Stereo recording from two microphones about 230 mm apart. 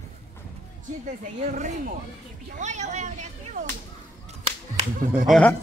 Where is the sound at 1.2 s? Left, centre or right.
Right.